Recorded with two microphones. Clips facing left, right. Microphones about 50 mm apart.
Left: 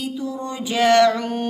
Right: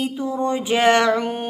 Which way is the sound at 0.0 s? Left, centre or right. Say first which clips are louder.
Right 4 dB; right.